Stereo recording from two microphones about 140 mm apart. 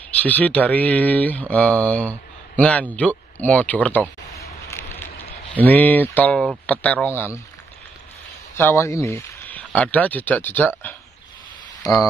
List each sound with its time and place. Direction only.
0.1 s speech: 10° left (ahead or behind)
4.6 s a sound: 15° left (ahead or behind)
5.5 s speech: 10° left (ahead or behind)
8.5 s speech: 20° left (ahead or behind)